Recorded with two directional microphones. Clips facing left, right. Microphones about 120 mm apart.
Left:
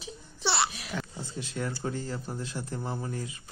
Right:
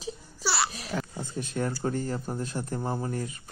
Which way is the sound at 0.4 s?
25° left (ahead or behind).